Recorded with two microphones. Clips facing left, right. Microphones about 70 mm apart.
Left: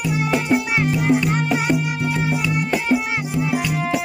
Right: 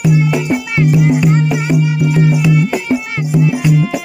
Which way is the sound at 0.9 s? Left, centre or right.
Left.